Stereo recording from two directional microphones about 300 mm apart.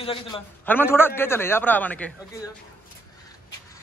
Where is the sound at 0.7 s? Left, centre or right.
Centre.